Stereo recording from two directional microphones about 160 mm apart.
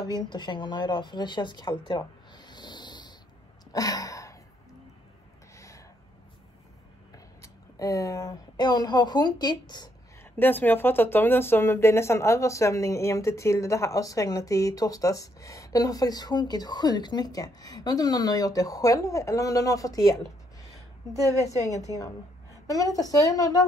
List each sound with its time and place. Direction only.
0.0 s speech: 25° left (ahead or behind)
3.7 s a sound: 20° left (ahead or behind)
7.4 s speech: 20° left (ahead or behind)
10.3 s speech: 10° left (ahead or behind)
21.1 s speech: 20° left (ahead or behind)